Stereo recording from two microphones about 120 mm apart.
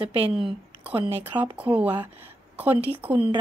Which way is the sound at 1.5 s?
10° right (ahead or behind).